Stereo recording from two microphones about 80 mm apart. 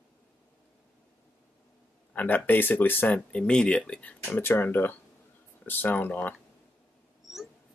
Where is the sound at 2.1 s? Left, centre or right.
Left.